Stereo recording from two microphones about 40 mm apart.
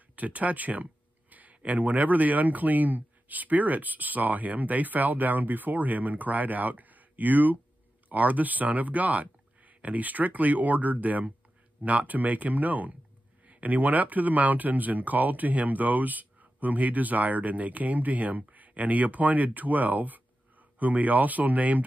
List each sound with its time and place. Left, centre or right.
0.1 s speech: right